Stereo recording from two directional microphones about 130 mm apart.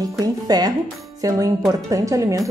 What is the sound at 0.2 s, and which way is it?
Music, 30° right (ahead or behind).